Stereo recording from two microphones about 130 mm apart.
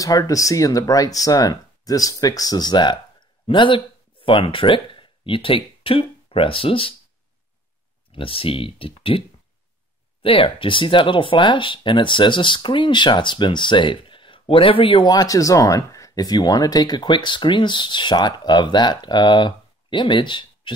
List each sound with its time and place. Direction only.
0.0 s speech: 25° left (ahead or behind); by 7.0 s 45° left (ahead or behind)
8.1 s speech: 45° left (ahead or behind)
10.2 s speech: 45° left (ahead or behind)